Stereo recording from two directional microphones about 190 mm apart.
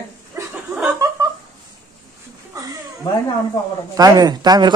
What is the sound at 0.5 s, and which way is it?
Chuckle, 5° right (ahead or behind).